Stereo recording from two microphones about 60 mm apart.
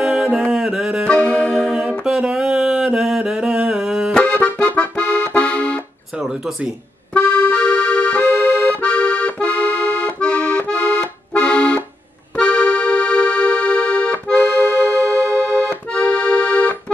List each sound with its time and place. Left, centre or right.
0.0 s music: centre
1.2 s music: left
1.5 s music: centre
1.8 s mantra: centre
4.2 s accordion: left
7.2 s accordion: left
15.5 s accordion: left